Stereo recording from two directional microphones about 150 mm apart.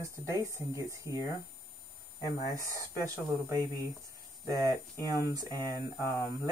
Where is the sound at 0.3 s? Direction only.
20° right (ahead or behind).